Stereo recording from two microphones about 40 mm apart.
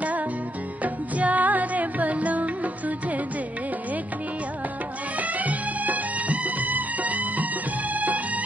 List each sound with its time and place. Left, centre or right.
0.8 s music: right
5.4 s music: right